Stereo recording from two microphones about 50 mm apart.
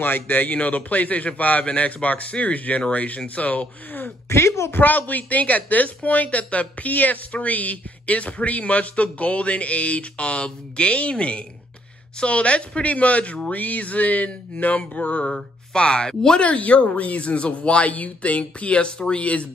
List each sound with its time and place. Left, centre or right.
0.0 s a man's voice: left
4.3 s a woman's voice: left
4.7 s a woman's voice: left
15.3 s speech: centre
16.4 s a woman's voice: left